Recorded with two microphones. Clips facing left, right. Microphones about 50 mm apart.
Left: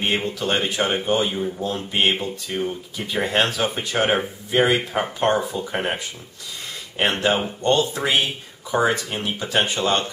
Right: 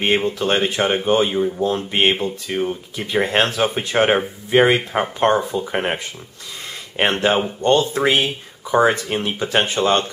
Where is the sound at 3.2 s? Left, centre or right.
Right.